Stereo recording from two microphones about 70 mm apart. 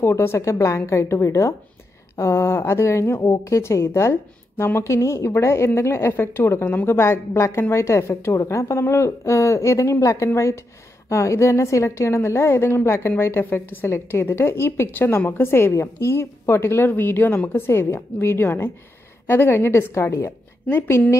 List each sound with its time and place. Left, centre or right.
0.0 s a woman's voice: left
20.2 s speech: left